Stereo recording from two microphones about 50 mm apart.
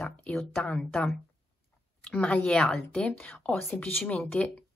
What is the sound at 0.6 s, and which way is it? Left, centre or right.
Speech, centre.